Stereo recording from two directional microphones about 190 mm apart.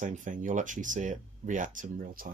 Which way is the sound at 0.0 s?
40° right (ahead or behind).